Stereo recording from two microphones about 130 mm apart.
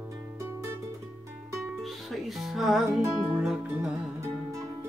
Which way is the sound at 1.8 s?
Centre (ahead or behind).